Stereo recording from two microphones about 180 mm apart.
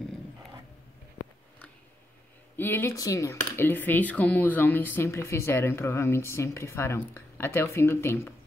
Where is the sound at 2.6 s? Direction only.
10° left (ahead or behind).